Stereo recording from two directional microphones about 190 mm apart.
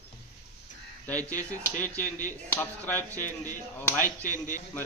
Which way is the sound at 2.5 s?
10° left (ahead or behind).